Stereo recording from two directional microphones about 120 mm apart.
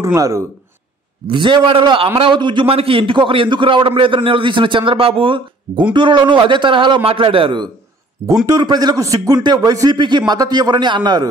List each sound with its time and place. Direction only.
0.0 s speech: 25° right (ahead or behind)
1.3 s a man's voice: 45° right (ahead or behind)
8.5 s a man's voice: 35° right (ahead or behind)